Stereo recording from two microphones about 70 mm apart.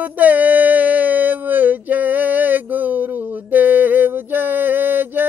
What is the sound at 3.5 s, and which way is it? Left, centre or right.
Mantra, right.